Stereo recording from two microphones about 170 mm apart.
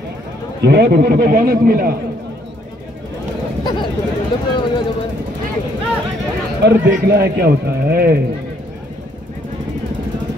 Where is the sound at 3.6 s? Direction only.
25° left (ahead or behind).